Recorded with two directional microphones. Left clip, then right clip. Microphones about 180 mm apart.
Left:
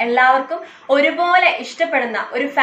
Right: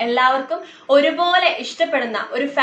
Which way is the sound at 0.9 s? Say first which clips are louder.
Even; centre (ahead or behind).